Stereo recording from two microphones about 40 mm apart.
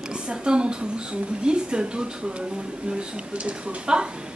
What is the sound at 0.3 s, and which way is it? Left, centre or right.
A woman's voice, right.